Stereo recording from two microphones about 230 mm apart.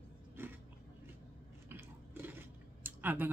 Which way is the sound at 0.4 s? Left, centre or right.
Centre.